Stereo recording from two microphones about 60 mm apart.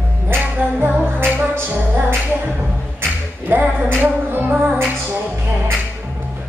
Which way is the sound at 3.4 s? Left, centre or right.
Right.